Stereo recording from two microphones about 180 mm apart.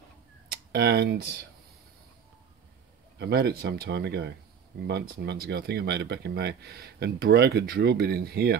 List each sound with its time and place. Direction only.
0.5 s speech: 60° right (ahead or behind)
3.2 s speech: 65° right (ahead or behind)